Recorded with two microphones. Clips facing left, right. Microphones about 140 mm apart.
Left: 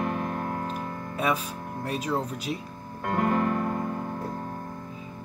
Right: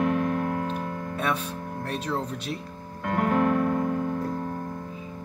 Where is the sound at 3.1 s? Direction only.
55° right (ahead or behind).